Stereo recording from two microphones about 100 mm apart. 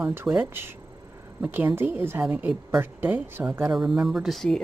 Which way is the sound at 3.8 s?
5° right (ahead or behind).